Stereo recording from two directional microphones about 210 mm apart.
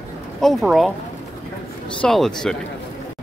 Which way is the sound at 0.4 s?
Centre (ahead or behind).